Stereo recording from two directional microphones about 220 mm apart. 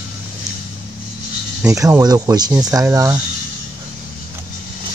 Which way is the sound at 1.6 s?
15° right (ahead or behind).